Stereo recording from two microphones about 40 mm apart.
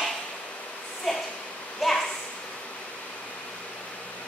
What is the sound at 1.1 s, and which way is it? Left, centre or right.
Speech, centre.